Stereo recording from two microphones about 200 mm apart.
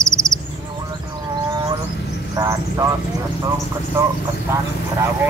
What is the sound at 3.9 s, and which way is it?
Speech, 10° right (ahead or behind).